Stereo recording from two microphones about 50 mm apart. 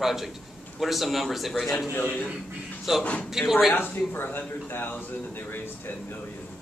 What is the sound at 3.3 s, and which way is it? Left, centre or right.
Speech, centre.